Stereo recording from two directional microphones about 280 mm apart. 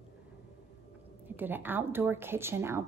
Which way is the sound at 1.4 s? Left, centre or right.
Centre.